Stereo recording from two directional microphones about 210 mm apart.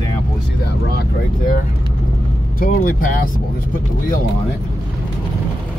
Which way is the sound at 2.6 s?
40° left (ahead or behind).